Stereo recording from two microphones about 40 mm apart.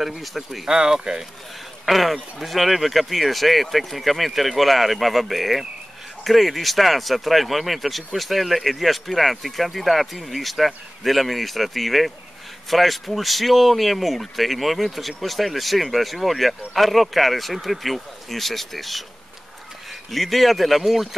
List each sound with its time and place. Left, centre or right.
0.0 s speech: centre
0.7 s speech: centre
1.9 s speech: centre
20.1 s speech: centre